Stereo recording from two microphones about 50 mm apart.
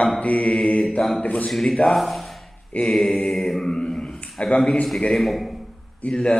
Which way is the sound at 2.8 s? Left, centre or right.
Centre.